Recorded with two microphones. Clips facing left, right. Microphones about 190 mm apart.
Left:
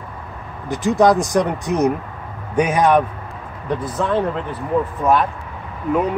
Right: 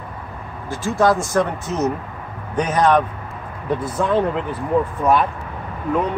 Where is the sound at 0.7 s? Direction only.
20° left (ahead or behind).